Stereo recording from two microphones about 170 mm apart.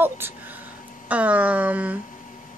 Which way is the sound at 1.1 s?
10° right (ahead or behind).